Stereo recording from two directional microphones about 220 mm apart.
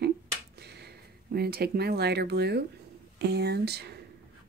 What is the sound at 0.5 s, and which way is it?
Speech, 50° right (ahead or behind).